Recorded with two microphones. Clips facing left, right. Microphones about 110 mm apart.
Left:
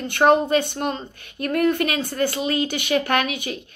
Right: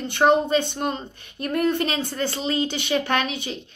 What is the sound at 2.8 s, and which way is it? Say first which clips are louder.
Speech: left 3 dB; 55° left (ahead or behind).